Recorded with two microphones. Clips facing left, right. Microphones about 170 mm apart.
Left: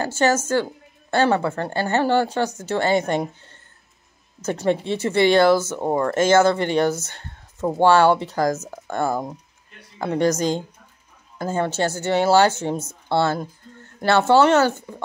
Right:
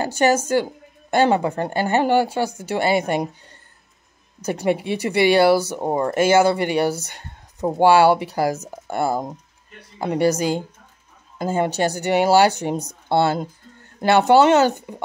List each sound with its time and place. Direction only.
0.0 s speech: 15° right (ahead or behind)